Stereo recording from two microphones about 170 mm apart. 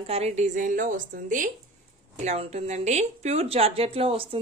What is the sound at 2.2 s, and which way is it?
Speech, 40° right (ahead or behind).